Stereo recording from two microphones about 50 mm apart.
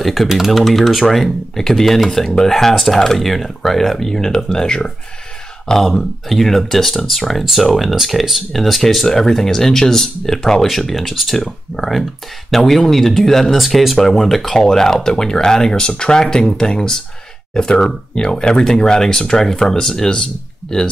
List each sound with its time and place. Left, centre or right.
0.0 s speech: centre